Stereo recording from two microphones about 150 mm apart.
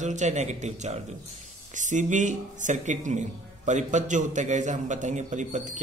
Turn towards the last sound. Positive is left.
turn(degrees=-55)  # may be behind; listen again after turning